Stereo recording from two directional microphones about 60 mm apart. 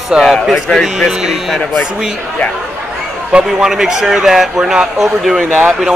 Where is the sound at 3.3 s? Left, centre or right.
Centre.